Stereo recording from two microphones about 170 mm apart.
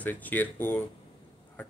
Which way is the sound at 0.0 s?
10° left (ahead or behind).